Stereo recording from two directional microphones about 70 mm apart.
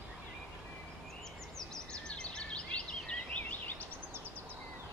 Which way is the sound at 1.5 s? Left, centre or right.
Centre.